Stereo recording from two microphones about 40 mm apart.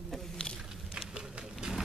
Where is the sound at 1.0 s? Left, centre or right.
Centre.